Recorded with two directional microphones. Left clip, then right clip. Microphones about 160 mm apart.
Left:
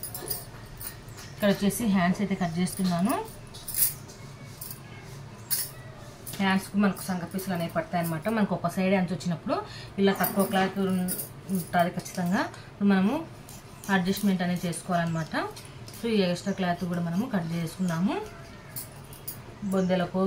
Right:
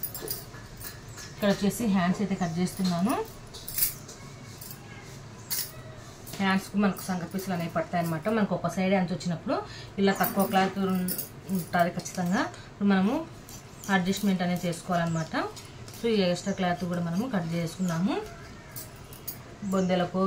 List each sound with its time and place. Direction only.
1.4 s a woman's voice: centre (ahead or behind)
6.4 s speech: 10° right (ahead or behind)
10.3 s speech: 20° right (ahead or behind)
11.7 s a woman's voice: 10° right (ahead or behind)
19.7 s speech: 20° right (ahead or behind)